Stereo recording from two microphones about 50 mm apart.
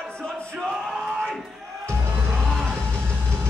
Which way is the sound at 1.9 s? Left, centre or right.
Right.